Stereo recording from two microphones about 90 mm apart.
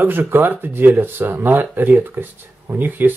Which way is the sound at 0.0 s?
20° right (ahead or behind).